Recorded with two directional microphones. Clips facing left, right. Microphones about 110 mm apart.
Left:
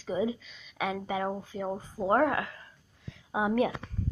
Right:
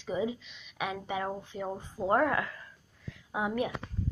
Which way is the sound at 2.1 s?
30° left (ahead or behind).